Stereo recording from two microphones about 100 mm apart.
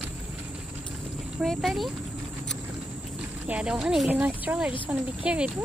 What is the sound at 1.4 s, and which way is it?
Speech, centre (ahead or behind).